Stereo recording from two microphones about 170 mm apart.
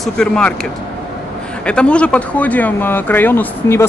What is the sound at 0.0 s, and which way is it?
Speech, 5° left (ahead or behind).